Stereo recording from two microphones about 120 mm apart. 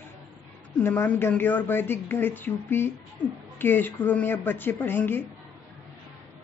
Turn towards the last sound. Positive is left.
turn(degrees=20)  # may be behind; listen again after turning